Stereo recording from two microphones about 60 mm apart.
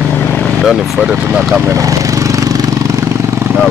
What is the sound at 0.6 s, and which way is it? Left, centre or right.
Speech, centre.